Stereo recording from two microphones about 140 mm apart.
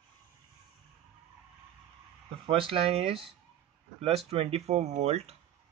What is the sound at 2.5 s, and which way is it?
Speech, 40° right (ahead or behind).